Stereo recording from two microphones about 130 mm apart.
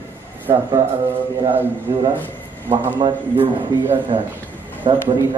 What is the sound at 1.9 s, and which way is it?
Speech, 30° right (ahead or behind).